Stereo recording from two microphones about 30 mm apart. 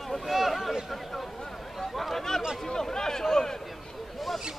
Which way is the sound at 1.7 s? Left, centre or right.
Centre.